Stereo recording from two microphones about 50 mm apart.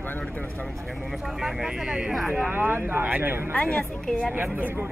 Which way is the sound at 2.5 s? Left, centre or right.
Right.